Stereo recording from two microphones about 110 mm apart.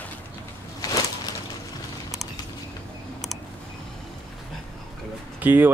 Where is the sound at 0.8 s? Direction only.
35° left (ahead or behind).